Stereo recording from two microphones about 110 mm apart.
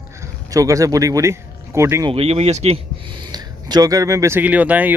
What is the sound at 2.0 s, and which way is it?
Speech, 65° right (ahead or behind).